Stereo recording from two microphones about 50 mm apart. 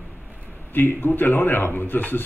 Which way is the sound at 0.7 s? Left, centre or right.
Left.